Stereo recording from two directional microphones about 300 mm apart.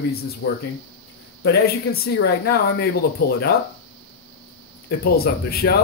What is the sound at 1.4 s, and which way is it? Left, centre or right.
Speech, left.